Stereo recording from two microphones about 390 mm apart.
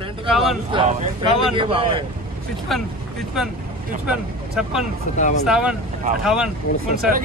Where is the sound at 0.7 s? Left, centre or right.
Centre.